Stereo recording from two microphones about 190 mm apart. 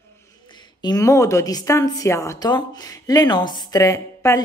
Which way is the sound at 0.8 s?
20° left (ahead or behind).